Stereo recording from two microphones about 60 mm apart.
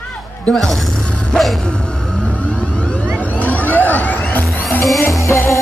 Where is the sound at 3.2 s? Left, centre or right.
Left.